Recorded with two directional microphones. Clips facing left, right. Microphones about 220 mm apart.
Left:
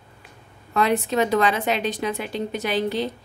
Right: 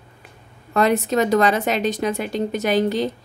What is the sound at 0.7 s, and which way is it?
Speech, 45° right (ahead or behind).